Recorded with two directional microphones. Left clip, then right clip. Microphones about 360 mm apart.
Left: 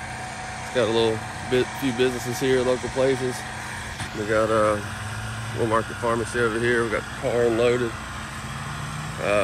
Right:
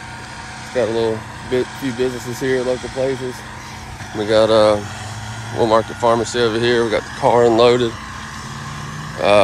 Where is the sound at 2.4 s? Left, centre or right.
Centre.